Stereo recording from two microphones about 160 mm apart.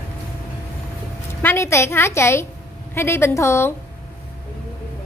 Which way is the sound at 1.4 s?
15° left (ahead or behind).